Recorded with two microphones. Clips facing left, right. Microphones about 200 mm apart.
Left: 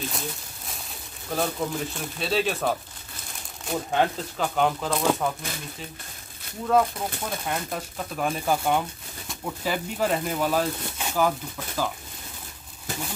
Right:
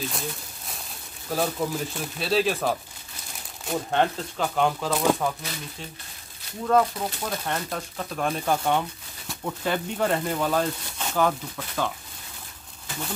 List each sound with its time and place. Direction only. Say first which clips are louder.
0.1 s a sound: right 1 dB; centre (ahead or behind)
1.3 s speech: right 1 dB; 5° right (ahead or behind)
6.7 s speech: even; 5° left (ahead or behind)